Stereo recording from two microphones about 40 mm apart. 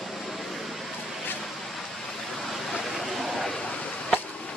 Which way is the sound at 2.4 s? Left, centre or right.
Centre.